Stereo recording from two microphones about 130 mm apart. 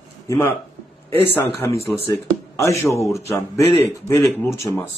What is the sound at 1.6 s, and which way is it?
Speech, 25° left (ahead or behind).